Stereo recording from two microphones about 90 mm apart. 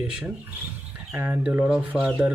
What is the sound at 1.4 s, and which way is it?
Speech, 15° right (ahead or behind).